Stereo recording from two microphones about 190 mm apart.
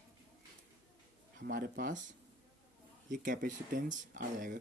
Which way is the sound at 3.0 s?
45° right (ahead or behind).